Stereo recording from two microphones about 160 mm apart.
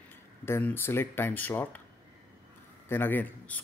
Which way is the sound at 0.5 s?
10° left (ahead or behind).